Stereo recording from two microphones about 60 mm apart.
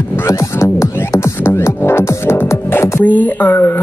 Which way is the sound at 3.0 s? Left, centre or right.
Left.